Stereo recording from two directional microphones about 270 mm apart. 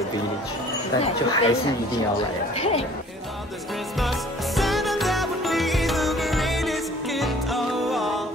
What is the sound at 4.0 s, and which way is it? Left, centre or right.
Music, centre.